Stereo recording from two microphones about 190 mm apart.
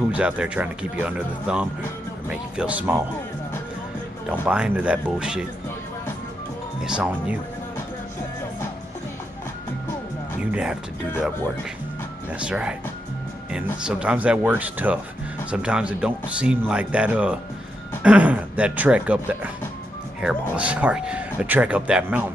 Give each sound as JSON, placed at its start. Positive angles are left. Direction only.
{"t": 0.1, "sound": "speech", "side_deg": -5}
{"t": 4.3, "sound": "speech", "side_deg": -5}
{"t": 6.8, "sound": "speech", "side_deg": -5}
{"t": 10.4, "sound": "speech", "side_deg": -5}
{"t": 12.3, "sound": "speech", "side_deg": -5}
{"t": 13.8, "sound": "speech", "side_deg": -5}